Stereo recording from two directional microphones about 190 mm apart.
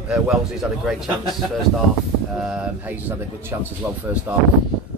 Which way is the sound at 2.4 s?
5° right (ahead or behind).